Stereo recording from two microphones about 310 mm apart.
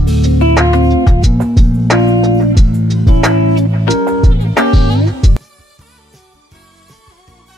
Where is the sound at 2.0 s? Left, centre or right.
Centre.